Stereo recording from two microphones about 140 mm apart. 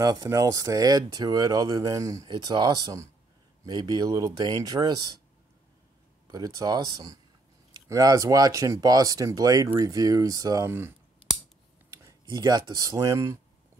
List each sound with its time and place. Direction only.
0.0 s speech: 25° right (ahead or behind)
6.2 s speech: 25° right (ahead or behind)
11.9 s speech: 25° right (ahead or behind)